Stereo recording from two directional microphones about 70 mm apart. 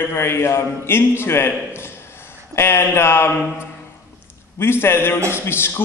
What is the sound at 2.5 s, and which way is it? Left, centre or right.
A man's voice, left.